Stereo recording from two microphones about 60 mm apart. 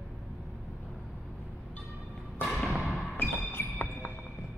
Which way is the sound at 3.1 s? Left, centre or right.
Left.